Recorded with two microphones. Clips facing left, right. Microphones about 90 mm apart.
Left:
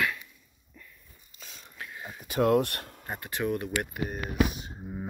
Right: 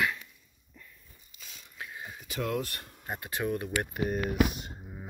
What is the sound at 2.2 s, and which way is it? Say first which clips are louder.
Speech: left 9 dB; 50° left (ahead or behind).